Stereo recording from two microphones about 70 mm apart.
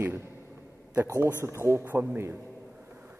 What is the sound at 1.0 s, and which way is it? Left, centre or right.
A man's voice, right.